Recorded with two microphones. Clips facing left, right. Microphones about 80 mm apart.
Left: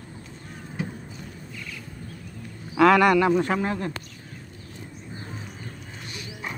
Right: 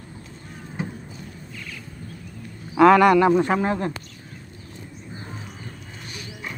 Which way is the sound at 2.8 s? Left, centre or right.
Right.